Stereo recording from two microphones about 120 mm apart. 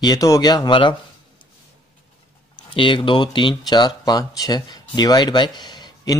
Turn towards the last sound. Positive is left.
turn(degrees=35)  # may be behind; listen again after turning